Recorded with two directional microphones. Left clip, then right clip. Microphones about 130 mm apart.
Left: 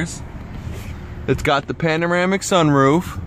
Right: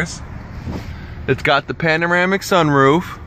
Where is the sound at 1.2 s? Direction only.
15° left (ahead or behind).